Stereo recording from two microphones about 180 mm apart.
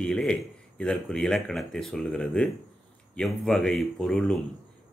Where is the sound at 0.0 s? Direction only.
5° left (ahead or behind).